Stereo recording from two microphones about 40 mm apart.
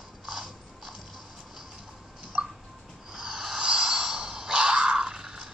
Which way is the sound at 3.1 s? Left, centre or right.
Centre.